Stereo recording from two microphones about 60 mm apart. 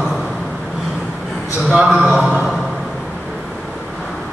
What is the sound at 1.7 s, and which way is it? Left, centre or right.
Speech, centre.